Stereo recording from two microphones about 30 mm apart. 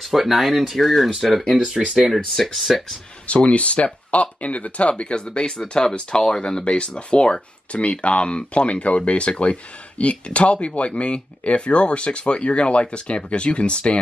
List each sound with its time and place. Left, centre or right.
0.0 s speech: centre
1.6 s speech: centre
2.1 s speech: centre
3.3 s speech: left
6.6 s speech: left